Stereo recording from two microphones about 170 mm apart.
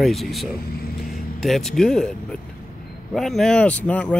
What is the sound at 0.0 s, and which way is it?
Speech, centre (ahead or behind).